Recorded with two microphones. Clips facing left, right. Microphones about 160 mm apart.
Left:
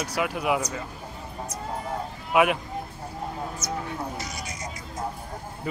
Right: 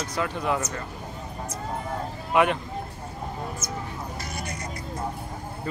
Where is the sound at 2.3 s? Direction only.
5° left (ahead or behind).